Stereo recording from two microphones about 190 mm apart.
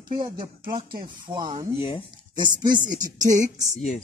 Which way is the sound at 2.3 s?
20° right (ahead or behind).